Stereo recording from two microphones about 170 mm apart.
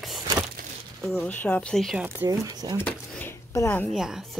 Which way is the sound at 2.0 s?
15° right (ahead or behind).